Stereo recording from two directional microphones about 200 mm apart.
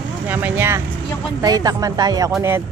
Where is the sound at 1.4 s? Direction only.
20° right (ahead or behind).